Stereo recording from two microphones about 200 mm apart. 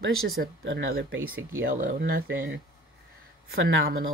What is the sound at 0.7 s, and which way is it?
Speech, 90° right.